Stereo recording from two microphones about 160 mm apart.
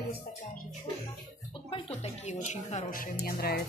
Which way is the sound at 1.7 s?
45° left (ahead or behind).